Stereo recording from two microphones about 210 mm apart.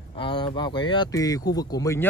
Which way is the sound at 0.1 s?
25° left (ahead or behind).